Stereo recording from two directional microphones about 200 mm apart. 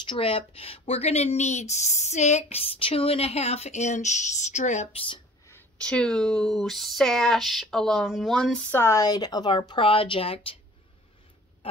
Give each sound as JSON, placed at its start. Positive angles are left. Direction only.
{"t": 0.0, "sound": "speech", "side_deg": 25}
{"t": 5.5, "sound": "speech", "side_deg": 5}